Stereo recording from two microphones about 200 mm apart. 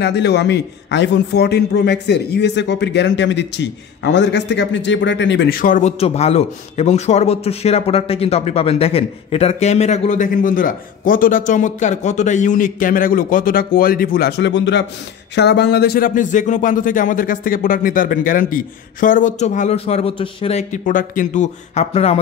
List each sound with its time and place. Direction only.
0.0 s a man's voice: 55° left (ahead or behind)
5.6 s a man's voice: 40° left (ahead or behind)